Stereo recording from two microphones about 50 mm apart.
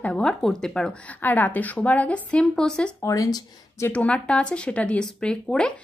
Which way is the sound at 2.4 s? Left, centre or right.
Centre.